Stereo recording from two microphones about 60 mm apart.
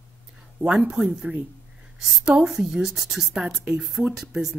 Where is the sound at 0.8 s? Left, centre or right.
Centre.